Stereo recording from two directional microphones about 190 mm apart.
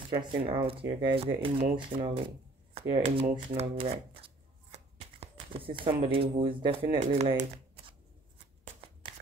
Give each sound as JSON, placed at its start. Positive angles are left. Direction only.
{"t": 0.1, "sound": "speech", "side_deg": -30}